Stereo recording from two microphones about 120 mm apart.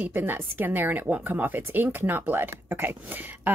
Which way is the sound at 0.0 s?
15° right (ahead or behind).